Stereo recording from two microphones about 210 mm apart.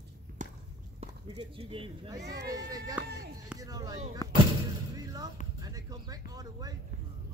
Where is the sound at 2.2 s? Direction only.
50° right (ahead or behind).